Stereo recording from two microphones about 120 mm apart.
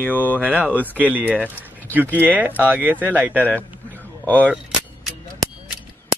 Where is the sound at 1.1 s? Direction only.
15° right (ahead or behind).